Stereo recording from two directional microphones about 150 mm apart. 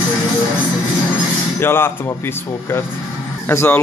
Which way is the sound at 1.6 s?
15° left (ahead or behind).